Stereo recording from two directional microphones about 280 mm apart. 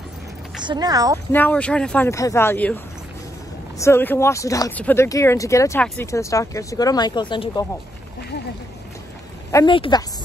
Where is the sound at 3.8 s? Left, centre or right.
Centre.